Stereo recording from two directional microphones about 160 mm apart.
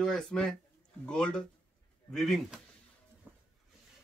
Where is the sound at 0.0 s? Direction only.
5° left (ahead or behind).